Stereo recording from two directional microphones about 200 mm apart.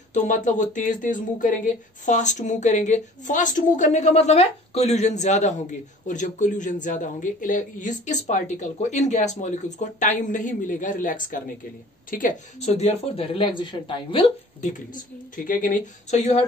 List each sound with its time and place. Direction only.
0.1 s speech: 40° left (ahead or behind)
15.3 s speech: 45° left (ahead or behind)